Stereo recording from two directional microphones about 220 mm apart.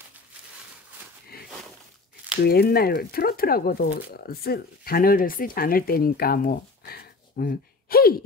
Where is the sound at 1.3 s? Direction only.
45° left (ahead or behind).